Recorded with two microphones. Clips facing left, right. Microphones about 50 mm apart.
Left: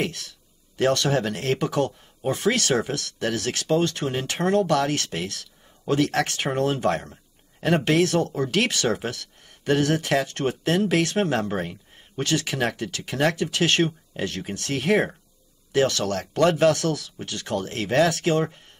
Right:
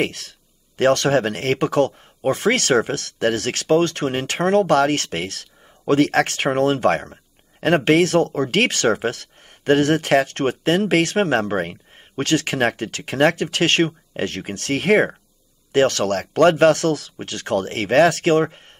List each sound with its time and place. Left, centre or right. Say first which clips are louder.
0.0 s speech: right 5 dB; right